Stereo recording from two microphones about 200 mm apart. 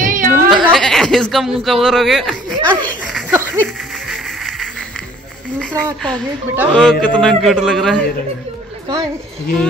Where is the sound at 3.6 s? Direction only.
Centre (ahead or behind).